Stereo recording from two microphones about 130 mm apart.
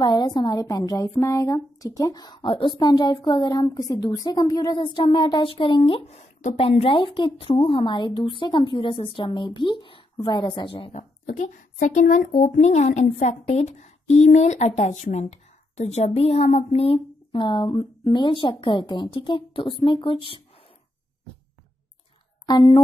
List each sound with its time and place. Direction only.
0.0 s speech: 35° left (ahead or behind)
4.7 s speech: 40° left (ahead or behind)
10.9 s speech: 70° left (ahead or behind); by 20.4 s 40° left (ahead or behind)
22.5 s speech: 35° left (ahead or behind)